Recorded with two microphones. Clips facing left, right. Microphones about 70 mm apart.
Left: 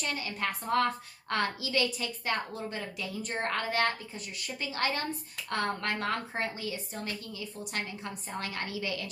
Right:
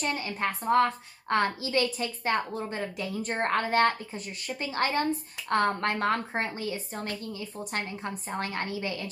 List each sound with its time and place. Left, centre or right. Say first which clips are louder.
0.0 s a woman's voice: right 4 dB; right